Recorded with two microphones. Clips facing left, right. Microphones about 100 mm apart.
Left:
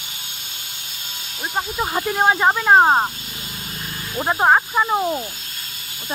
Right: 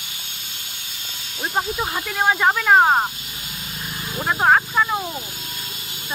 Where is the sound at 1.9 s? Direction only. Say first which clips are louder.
Left 3 dB; 20° left (ahead or behind).